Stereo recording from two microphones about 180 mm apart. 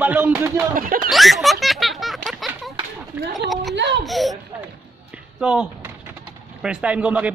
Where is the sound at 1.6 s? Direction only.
Centre (ahead or behind).